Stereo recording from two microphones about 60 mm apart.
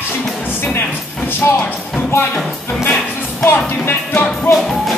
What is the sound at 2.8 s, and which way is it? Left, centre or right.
Music, left.